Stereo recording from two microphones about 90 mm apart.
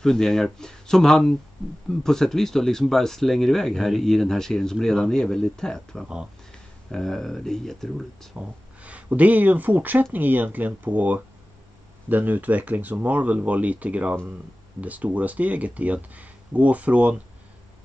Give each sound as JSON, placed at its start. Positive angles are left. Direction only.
{"t": 0.0, "sound": "speech", "side_deg": 5}
{"t": 8.4, "sound": "speech", "side_deg": -15}